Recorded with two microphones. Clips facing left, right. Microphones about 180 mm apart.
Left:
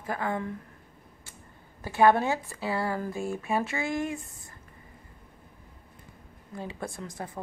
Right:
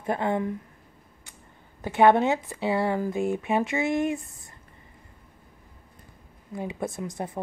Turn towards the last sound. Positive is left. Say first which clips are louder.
# right 5 dB
turn(degrees=-25)  # may be behind; listen again after turning